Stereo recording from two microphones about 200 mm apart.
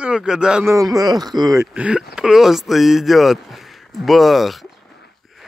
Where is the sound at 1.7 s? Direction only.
5° right (ahead or behind).